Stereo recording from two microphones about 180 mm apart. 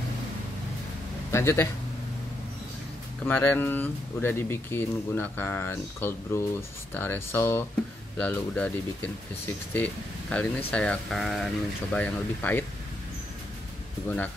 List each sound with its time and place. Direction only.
1.3 s speech: 15° left (ahead or behind)
3.3 s speech: 10° left (ahead or behind)
10.3 s speech: 10° left (ahead or behind)
14.0 s speech: 10° left (ahead or behind)